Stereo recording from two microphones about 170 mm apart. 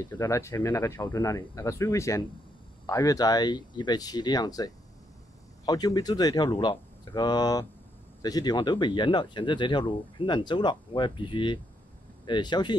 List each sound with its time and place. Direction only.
0.0 s speech: 15° left (ahead or behind)